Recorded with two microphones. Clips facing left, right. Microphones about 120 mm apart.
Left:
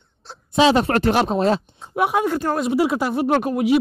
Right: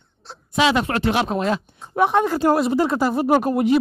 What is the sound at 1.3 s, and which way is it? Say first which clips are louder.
Speech: left 3 dB; 30° left (ahead or behind).